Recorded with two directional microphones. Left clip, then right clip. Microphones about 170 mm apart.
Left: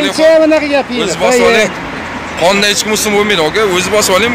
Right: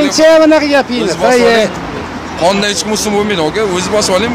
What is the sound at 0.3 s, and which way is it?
Speech, 10° right (ahead or behind).